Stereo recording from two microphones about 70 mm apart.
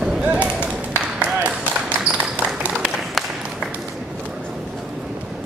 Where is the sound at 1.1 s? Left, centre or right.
Centre.